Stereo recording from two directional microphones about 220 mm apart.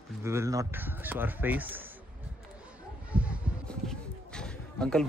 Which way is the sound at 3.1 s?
5° right (ahead or behind).